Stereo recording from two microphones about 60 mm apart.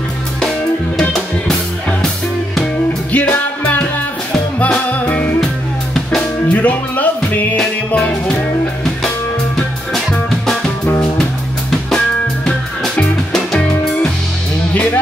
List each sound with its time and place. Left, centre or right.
0.4 s music: centre
3.1 s music: left
6.5 s music: left
7.5 s music: centre
10.4 s music: centre
12.4 s music: centre